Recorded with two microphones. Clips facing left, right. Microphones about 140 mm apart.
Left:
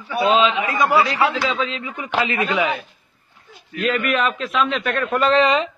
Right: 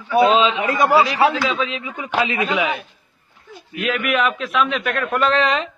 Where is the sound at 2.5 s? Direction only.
5° right (ahead or behind).